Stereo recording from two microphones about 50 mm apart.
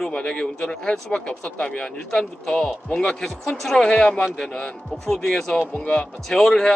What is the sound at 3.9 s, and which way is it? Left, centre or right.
Speech, centre.